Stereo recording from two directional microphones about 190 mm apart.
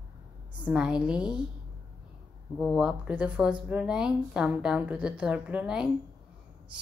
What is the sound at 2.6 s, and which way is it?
A woman's voice, 5° right (ahead or behind).